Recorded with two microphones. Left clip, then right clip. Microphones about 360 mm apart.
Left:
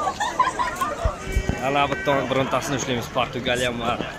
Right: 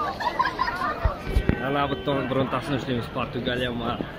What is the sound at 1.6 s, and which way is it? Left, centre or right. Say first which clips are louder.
Speech: left 6 dB; centre.